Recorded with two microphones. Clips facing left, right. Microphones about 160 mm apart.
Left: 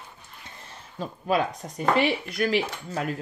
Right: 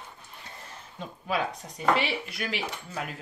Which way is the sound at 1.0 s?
45° left (ahead or behind).